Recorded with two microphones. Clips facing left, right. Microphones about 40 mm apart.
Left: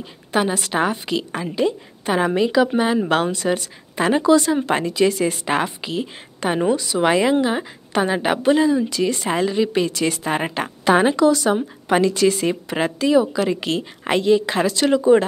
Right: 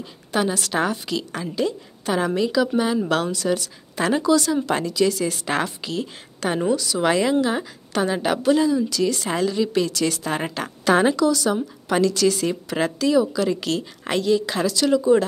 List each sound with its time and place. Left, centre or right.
0.3 s a woman's voice: left
11.2 s a woman's voice: left